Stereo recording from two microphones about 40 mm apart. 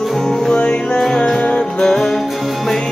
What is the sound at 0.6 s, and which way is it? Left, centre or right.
Music, left.